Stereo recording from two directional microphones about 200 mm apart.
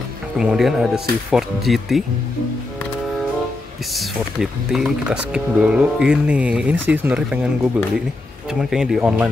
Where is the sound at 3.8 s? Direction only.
Centre (ahead or behind).